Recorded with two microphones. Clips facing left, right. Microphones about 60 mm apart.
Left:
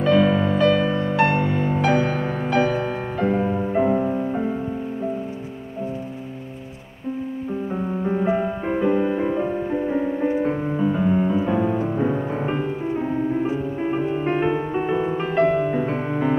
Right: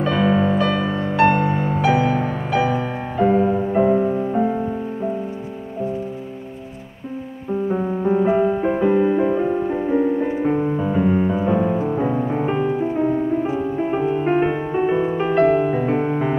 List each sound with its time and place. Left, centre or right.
0.0 s music: centre
3.2 s music: centre
8.0 s music: centre